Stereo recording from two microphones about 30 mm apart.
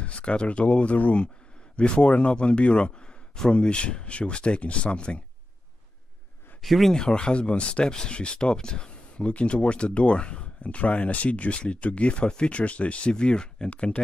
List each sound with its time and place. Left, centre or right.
0.0 s speech: left
0.9 s speech: left
1.8 s speech: left
6.6 s speech: centre
6.9 s speech: left
10.6 s speech: left
11.2 s speech: left
13.1 s speech: left